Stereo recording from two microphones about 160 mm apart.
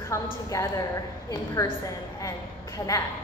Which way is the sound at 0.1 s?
15° left (ahead or behind).